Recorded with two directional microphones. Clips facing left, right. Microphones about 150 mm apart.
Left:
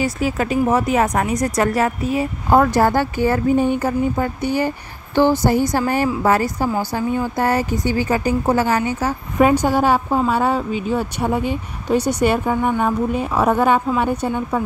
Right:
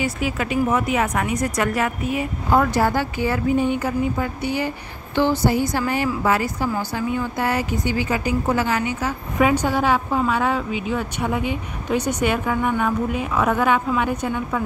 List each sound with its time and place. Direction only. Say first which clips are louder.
0.0 s a woman's voice: left 4 dB; 40° left (ahead or behind)
2.5 s a woman's voice: left 4 dB; 45° left (ahead or behind); by 14.6 s 30° left (ahead or behind)